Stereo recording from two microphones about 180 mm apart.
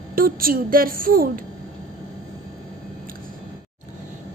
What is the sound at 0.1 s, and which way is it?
A woman's voice, 55° right (ahead or behind).